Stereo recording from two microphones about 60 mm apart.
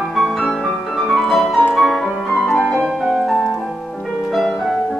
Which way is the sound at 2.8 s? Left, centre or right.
Centre.